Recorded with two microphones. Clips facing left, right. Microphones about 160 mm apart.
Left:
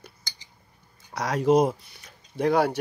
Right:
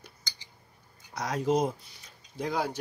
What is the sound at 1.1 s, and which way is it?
Speech, 75° left (ahead or behind).